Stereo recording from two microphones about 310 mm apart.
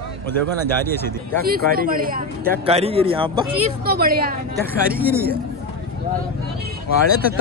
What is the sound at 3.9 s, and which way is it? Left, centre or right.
Speech, right.